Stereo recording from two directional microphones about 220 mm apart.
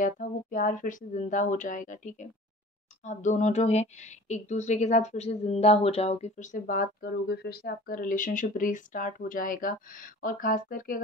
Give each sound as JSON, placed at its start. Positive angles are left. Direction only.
{"t": 0.0, "sound": "speech", "side_deg": 35}